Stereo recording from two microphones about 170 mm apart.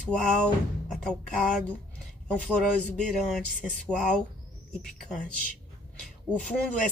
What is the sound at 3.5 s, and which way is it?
Speech, 5° left (ahead or behind).